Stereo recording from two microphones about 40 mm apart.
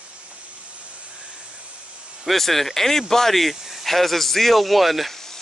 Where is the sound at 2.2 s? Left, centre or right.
Centre.